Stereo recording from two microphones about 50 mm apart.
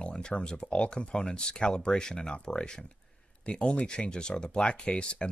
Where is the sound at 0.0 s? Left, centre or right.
Centre.